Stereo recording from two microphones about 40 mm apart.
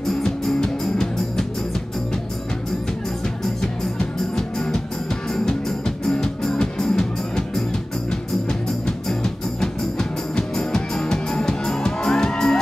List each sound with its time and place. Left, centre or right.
0.1 s music: centre
4.4 s music: centre